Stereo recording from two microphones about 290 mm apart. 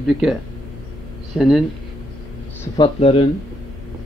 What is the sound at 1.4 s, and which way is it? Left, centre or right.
Speech, centre.